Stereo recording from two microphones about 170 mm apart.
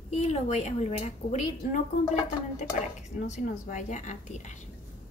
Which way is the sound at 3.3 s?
50° left (ahead or behind).